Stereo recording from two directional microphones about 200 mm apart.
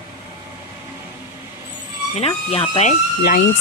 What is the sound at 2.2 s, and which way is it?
Speech, 30° left (ahead or behind).